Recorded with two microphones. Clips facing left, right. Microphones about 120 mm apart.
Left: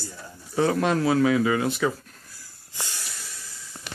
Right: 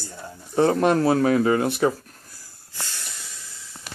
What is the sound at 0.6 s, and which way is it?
Speech, 45° right (ahead or behind).